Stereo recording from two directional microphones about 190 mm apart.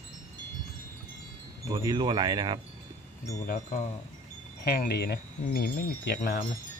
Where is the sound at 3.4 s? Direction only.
45° left (ahead or behind).